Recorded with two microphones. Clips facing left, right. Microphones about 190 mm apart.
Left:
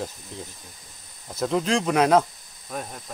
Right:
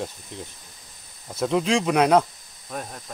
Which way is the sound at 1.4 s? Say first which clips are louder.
Right 1 dB; centre (ahead or behind).